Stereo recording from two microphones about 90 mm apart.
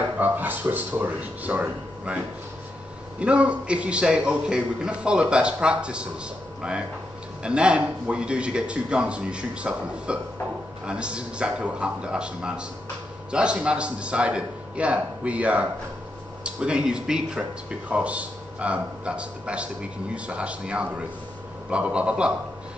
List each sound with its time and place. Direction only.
0.2 s speech: 20° right (ahead or behind)
3.2 s speech: 15° right (ahead or behind)
7.4 s speech: 10° right (ahead or behind)